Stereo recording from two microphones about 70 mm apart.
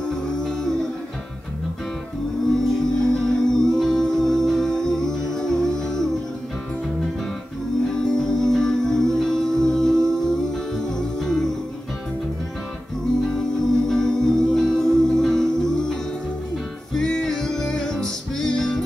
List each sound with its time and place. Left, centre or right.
0.1 s music: centre
2.7 s music: centre
7.9 s music: centre
13.2 s music: centre